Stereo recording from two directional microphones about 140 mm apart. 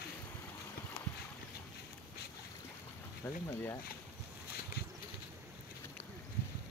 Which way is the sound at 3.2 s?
15° left (ahead or behind).